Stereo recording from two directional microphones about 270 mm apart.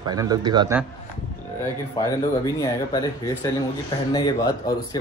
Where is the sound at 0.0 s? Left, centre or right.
Centre.